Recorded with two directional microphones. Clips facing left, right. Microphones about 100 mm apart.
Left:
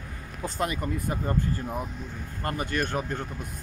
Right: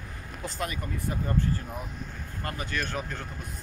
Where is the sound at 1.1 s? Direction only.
30° left (ahead or behind).